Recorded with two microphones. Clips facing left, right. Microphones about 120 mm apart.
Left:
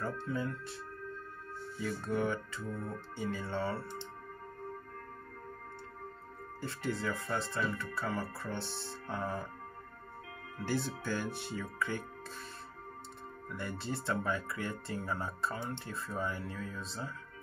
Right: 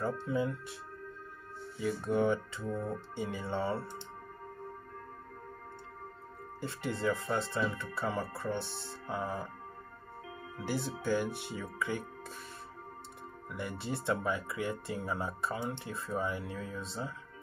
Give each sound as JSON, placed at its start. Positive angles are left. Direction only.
{"t": 0.0, "sound": "speech", "side_deg": -20}
{"t": 1.8, "sound": "speech", "side_deg": -15}
{"t": 6.6, "sound": "speech", "side_deg": -20}
{"t": 10.6, "sound": "speech", "side_deg": -15}
{"t": 13.5, "sound": "speech", "side_deg": -15}